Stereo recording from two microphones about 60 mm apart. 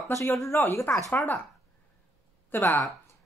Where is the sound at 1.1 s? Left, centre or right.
Left.